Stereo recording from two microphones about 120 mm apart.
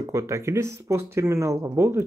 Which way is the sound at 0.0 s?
25° right (ahead or behind).